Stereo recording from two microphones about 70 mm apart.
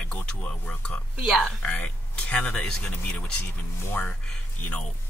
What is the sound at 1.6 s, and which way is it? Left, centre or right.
Speech, centre.